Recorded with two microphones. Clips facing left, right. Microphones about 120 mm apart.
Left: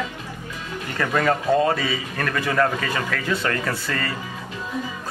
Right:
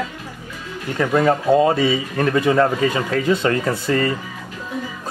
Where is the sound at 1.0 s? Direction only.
20° right (ahead or behind).